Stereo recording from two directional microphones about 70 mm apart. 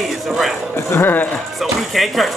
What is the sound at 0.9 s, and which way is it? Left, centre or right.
Speech, left.